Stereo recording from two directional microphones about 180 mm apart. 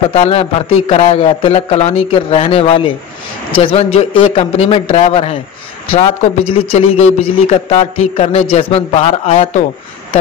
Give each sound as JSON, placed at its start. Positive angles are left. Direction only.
{"t": 0.1, "sound": "a man's voice", "side_deg": 30}